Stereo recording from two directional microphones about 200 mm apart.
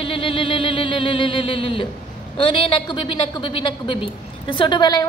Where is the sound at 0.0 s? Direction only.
25° left (ahead or behind).